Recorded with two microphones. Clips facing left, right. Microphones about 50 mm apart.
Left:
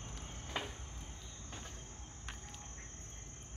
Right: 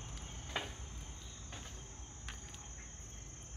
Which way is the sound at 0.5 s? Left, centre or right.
Centre.